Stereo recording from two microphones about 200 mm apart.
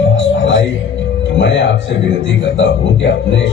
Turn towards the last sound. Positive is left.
turn(degrees=65)  # may be behind; listen again after turning